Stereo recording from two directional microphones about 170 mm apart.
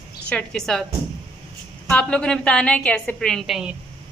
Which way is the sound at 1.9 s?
5° left (ahead or behind).